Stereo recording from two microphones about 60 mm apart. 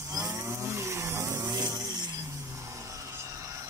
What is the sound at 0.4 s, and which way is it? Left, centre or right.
Chainsaw, right.